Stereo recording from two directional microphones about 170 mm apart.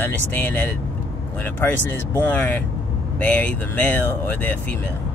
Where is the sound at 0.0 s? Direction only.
10° left (ahead or behind).